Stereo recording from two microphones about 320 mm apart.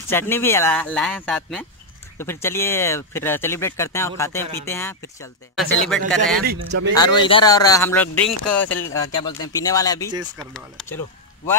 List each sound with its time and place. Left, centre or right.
0.1 s speech: centre
6.4 s speech: right
6.9 s speech: centre